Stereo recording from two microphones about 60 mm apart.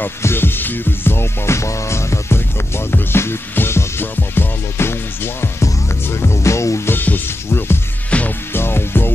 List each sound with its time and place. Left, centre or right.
0.2 s music: left
6.9 s music: left
8.1 s music: left
8.5 s music: left